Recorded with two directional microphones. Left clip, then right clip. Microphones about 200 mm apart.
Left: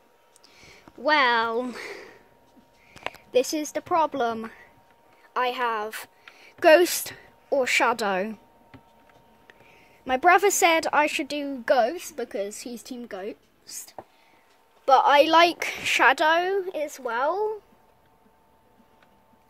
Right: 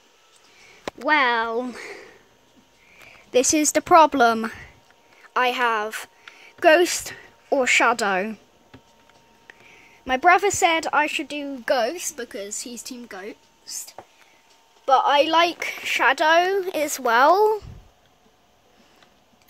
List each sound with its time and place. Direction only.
1.0 s a woman's voice: centre (ahead or behind)
3.3 s a woman's voice: 15° right (ahead or behind)
9.5 s a woman's voice: centre (ahead or behind)
16.3 s a woman's voice: 10° right (ahead or behind)
16.7 s a woman's voice: 30° right (ahead or behind)